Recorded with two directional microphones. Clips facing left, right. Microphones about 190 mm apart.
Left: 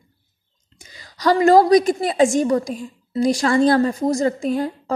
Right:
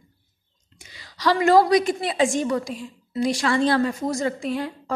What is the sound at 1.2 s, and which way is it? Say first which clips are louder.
A woman's voice: left 4 dB; 40° left (ahead or behind).